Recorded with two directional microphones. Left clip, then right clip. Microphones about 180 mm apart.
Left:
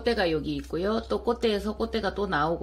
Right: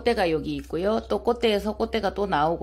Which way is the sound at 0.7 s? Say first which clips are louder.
Right 3 dB; 30° right (ahead or behind).